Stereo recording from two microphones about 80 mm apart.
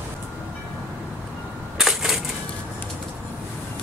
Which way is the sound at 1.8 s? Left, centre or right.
Centre.